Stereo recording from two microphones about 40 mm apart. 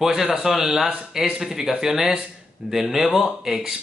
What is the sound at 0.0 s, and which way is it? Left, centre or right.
Speech, centre.